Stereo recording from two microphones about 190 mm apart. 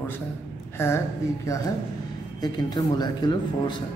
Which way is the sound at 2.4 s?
20° left (ahead or behind).